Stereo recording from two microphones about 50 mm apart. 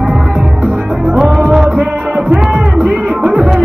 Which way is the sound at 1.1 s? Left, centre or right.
Centre.